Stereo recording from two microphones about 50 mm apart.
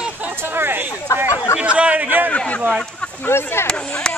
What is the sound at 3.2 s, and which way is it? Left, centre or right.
Speech, left.